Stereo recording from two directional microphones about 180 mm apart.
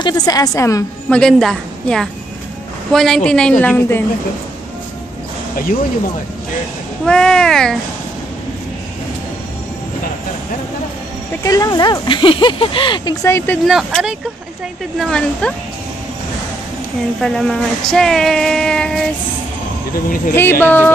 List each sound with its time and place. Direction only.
0.0 s speech: 20° left (ahead or behind)
1.1 s speech: 5° left (ahead or behind)
7.1 s speech: 5° left (ahead or behind)
11.4 s speech: 20° left (ahead or behind)
13.7 s speech: centre (ahead or behind)
17.2 s speech: 5° left (ahead or behind)
20.3 s speech: 10° left (ahead or behind)